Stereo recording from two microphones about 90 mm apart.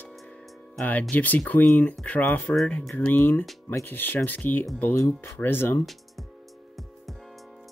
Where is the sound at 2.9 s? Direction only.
20° left (ahead or behind).